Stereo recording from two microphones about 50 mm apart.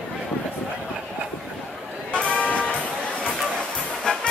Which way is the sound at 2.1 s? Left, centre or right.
Left.